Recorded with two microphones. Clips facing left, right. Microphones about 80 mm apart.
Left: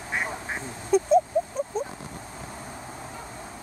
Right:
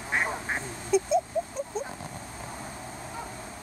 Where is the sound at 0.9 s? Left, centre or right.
Left.